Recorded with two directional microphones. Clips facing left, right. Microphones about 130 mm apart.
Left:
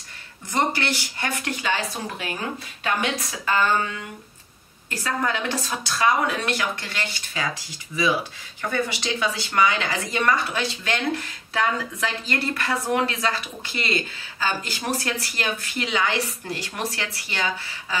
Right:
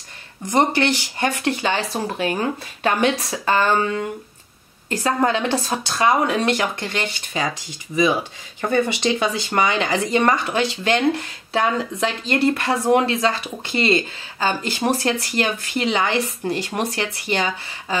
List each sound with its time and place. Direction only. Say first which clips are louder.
0.5 s speech: right 6 dB; 20° right (ahead or behind)
5.0 s speech: right 6 dB; 30° right (ahead or behind)
7.9 s speech: right 7 dB; 50° right (ahead or behind)
8.7 s speech: right 7 dB; 20° right (ahead or behind)
14.4 s speech: right 6 dB; 25° right (ahead or behind)